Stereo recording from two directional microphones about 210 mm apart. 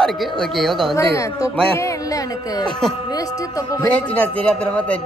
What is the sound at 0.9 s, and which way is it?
Speech, 15° left (ahead or behind).